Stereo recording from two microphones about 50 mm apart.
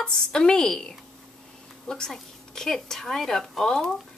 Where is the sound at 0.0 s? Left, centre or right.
Centre.